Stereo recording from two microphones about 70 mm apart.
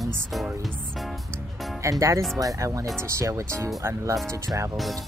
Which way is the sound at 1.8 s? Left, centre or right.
Right.